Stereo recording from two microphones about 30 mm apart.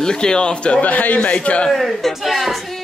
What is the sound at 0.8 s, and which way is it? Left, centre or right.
Speech, left.